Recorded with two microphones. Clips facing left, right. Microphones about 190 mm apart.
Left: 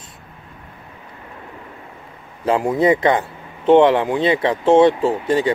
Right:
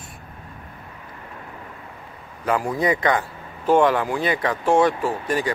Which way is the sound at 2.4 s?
25° left (ahead or behind).